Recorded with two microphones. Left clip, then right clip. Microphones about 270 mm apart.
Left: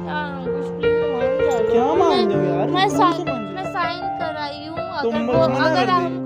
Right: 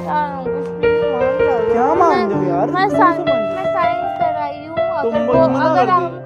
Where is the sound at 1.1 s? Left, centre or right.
Centre.